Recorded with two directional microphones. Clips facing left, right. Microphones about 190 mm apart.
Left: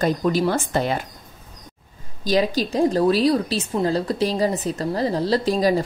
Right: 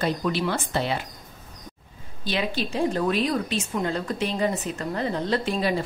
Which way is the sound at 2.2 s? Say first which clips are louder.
Left 7 dB; 40° left (ahead or behind).